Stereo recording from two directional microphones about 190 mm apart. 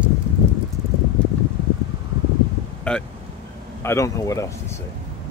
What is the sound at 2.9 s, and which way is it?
Speech, 5° left (ahead or behind).